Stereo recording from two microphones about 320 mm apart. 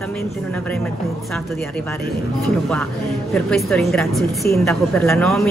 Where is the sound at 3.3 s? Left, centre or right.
Centre.